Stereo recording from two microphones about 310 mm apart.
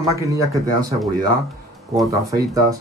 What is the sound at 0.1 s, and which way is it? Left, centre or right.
Speech, centre.